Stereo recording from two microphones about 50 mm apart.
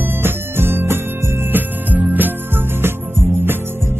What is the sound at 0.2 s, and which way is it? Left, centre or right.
Jingle bell, right.